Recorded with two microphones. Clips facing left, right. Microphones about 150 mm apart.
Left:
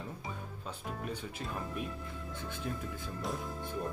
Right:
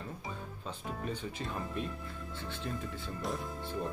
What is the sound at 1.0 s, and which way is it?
Speech, 5° left (ahead or behind).